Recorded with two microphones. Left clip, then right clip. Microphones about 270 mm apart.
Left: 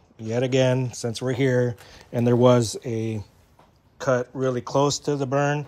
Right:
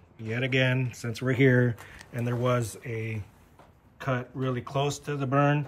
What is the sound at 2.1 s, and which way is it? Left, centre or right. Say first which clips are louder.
Speech: left 10 dB; centre.